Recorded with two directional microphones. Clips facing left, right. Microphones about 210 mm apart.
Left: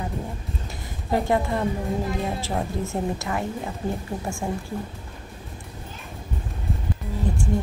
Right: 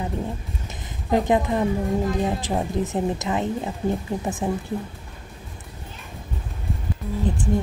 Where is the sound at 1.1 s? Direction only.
15° right (ahead or behind).